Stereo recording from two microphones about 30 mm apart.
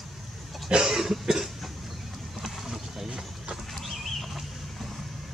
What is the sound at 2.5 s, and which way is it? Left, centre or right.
Vehicle, centre.